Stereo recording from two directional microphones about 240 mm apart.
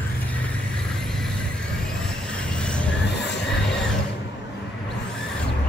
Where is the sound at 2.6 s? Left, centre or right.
Centre.